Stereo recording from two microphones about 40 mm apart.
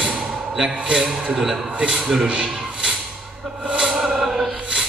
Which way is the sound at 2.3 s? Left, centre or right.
Centre.